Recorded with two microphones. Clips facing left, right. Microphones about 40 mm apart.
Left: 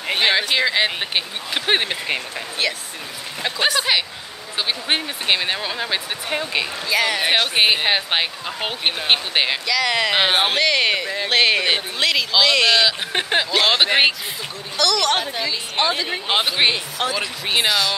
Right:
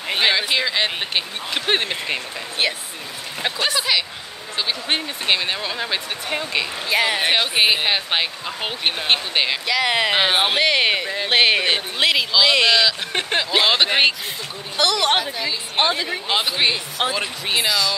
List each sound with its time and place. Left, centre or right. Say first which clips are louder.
0.0 s speech: left 1 dB; centre
2.6 s a woman's voice: right 1 dB; right
3.5 s speech: left 2 dB; centre
6.9 s speech: even; centre
7.2 s speech: left 1 dB; centre
9.7 s a woman's voice: even; centre
10.1 s speech: even; centre
10.5 s speech: even; centre
12.7 s speech: even; centre
14.8 s a woman's voice: right 1 dB; right
16.5 s speech: left 2 dB; left
17.6 s speech: left 1 dB; centre